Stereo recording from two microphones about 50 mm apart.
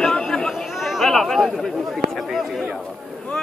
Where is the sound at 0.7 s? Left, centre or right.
Centre.